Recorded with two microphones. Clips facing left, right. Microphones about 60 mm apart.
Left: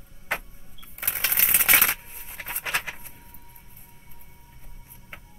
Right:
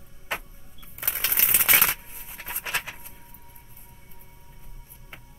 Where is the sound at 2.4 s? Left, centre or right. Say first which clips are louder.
Left 2 dB; left.